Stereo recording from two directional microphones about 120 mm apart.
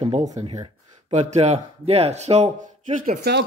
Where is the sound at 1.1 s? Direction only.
75° right (ahead or behind).